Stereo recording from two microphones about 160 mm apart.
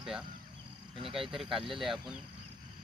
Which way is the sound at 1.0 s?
35° right (ahead or behind).